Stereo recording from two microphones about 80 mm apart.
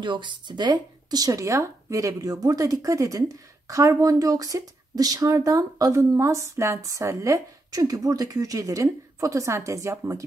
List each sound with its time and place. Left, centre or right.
0.0 s speech: right